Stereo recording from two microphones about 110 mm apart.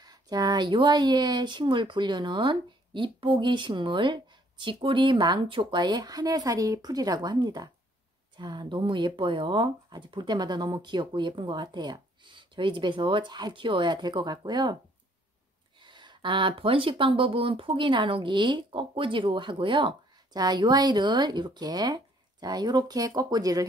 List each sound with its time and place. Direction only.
0.0 s speech: 40° right (ahead or behind)
15.8 s speech: 45° right (ahead or behind)